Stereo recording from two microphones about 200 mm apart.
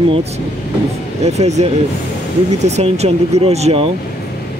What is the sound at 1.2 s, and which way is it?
Speech, 35° right (ahead or behind).